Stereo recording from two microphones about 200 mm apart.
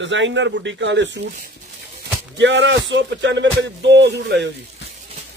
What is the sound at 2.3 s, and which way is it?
Speech, 65° right (ahead or behind).